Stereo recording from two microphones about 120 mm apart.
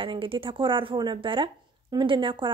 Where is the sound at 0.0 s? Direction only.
45° right (ahead or behind).